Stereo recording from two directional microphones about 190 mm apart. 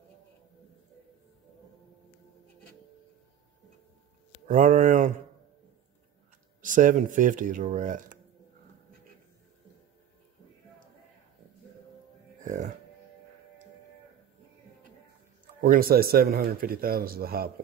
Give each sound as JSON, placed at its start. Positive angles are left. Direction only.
{"t": 4.5, "sound": "speech", "side_deg": -45}
{"t": 6.6, "sound": "speech", "side_deg": -45}
{"t": 12.4, "sound": "music", "side_deg": -40}
{"t": 15.6, "sound": "speech", "side_deg": -45}